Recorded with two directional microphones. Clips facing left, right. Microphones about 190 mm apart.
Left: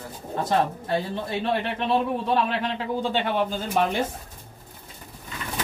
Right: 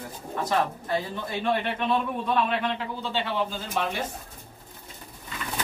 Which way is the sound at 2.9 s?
50° left (ahead or behind).